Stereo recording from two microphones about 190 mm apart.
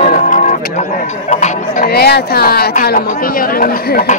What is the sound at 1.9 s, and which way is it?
Speech, 55° left (ahead or behind).